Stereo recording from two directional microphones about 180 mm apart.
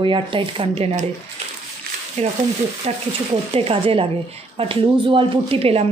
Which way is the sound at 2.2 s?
40° right (ahead or behind).